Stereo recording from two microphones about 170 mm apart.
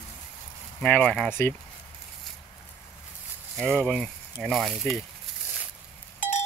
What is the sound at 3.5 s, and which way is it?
Speech, 5° left (ahead or behind).